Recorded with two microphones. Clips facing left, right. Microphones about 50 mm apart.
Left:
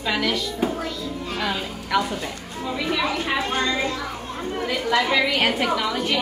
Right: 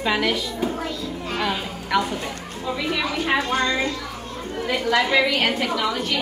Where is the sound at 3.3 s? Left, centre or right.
Centre.